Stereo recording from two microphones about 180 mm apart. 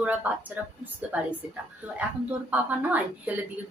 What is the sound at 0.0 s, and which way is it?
A woman's voice, 10° right (ahead or behind).